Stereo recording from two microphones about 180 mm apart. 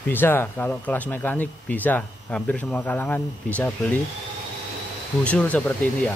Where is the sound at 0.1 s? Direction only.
10° left (ahead or behind).